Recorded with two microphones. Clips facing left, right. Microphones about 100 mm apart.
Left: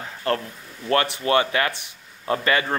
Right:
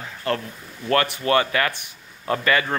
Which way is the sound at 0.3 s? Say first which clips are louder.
Left 1 dB; 35° left (ahead or behind).